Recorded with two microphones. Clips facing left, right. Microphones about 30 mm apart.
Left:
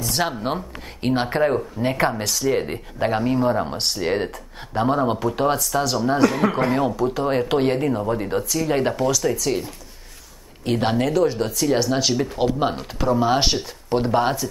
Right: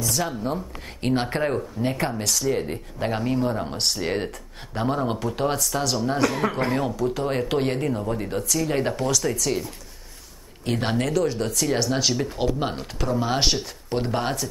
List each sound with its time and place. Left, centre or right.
0.1 s speech: left
0.7 s speech: centre
2.4 s speech: left
3.1 s speech: centre
10.6 s speech: centre